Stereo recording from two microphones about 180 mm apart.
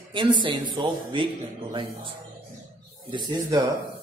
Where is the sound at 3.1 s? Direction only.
25° right (ahead or behind).